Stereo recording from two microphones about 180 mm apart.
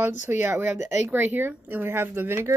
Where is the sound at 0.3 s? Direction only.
10° right (ahead or behind).